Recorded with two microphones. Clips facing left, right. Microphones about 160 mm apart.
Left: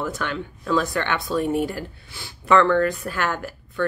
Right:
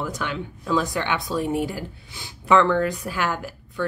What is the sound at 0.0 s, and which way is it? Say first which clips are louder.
Speech: left 1 dB; 15° right (ahead or behind).